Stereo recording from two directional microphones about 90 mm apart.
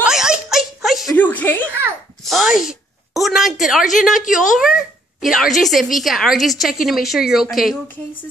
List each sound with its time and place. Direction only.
0.0 s a sound: 10° right (ahead or behind)
1.1 s chuckle: 20° left (ahead or behind)
2.2 s a woman's voice: centre (ahead or behind)